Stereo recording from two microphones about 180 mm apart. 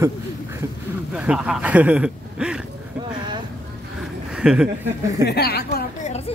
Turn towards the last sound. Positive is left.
turn(degrees=60)  # may be behind; listen again after turning